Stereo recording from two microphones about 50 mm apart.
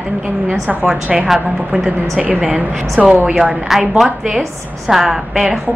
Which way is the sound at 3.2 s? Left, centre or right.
Centre.